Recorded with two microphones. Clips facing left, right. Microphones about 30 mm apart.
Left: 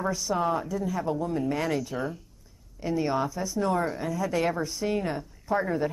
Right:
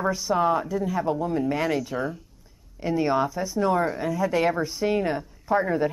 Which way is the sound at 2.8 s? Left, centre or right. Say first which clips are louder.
Right 4 dB; centre.